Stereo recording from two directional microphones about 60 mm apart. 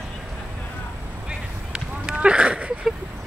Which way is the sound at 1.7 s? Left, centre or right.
Centre.